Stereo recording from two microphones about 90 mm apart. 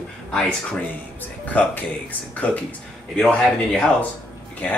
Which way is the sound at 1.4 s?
15° left (ahead or behind).